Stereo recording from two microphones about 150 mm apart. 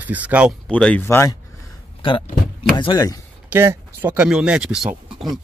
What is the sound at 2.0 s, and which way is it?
Speech, 35° left (ahead or behind).